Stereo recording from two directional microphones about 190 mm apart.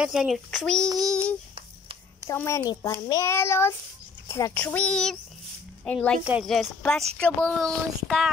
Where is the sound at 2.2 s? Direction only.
15° left (ahead or behind).